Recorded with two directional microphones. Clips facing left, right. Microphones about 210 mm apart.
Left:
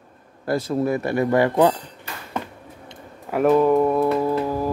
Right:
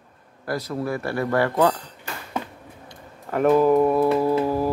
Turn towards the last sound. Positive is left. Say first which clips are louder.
# right 1 dB
turn(degrees=-10)  # may be behind; listen again after turning